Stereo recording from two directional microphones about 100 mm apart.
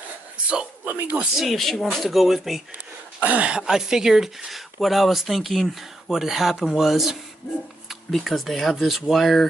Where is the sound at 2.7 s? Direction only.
15° right (ahead or behind).